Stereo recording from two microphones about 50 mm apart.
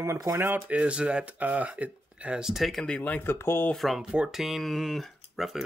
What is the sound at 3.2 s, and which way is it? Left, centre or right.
Speech, left.